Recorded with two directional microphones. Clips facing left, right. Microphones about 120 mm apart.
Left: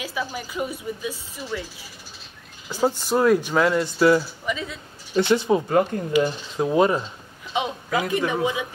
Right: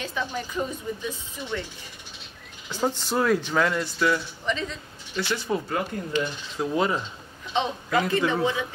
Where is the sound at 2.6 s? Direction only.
10° left (ahead or behind).